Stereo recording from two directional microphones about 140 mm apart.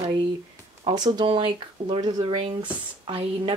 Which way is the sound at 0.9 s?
30° right (ahead or behind).